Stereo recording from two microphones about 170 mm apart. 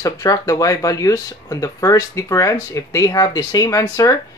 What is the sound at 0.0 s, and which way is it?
Speech, 20° left (ahead or behind).